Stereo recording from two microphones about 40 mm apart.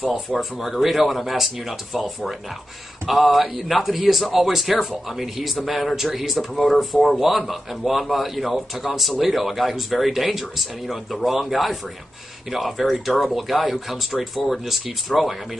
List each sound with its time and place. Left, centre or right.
0.3 s a man's voice: centre
3.1 s a man's voice: centre